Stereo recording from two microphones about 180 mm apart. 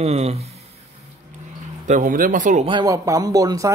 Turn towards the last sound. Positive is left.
turn(degrees=-20)  # may be behind; listen again after turning